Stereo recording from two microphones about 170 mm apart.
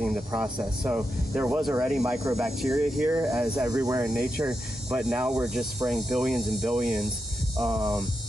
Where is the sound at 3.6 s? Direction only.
20° right (ahead or behind).